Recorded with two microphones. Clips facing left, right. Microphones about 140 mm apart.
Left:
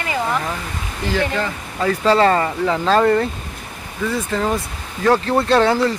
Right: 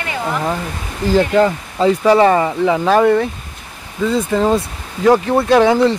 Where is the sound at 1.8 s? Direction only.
15° right (ahead or behind).